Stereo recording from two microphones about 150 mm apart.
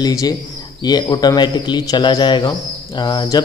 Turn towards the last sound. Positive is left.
turn(degrees=25)  # may be behind; listen again after turning